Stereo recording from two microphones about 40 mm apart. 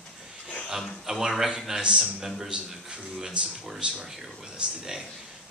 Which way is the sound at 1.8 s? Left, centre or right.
Right.